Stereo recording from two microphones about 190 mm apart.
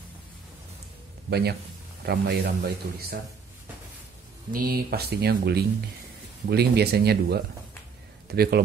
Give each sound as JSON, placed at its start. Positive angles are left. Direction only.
{"t": 1.3, "sound": "speech", "side_deg": -60}
{"t": 4.5, "sound": "speech", "side_deg": -50}